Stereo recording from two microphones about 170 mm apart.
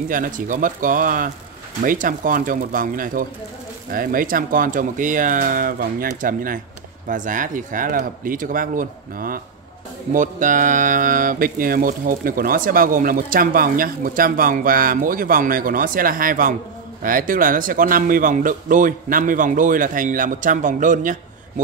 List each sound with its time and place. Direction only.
0.1 s speech: 50° right (ahead or behind)